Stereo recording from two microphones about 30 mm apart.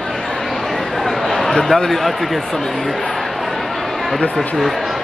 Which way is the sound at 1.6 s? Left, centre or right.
Centre.